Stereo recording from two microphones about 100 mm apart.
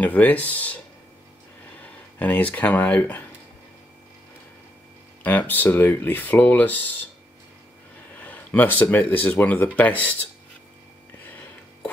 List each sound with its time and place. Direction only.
0.0 s speech: 15° left (ahead or behind)
1.8 s speech: 15° left (ahead or behind)
5.2 s speech: 15° left (ahead or behind)
8.2 s a sound: 15° left (ahead or behind)
8.9 s speech: 15° left (ahead or behind)